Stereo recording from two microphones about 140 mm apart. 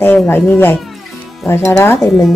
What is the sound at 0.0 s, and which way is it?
Speech, 15° left (ahead or behind).